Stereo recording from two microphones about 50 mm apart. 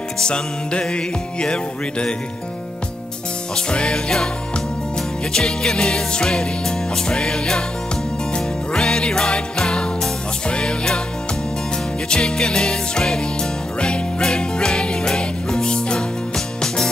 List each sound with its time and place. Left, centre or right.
0.2 s music: centre
3.5 s music: centre
5.3 s music: centre
12.1 s music: centre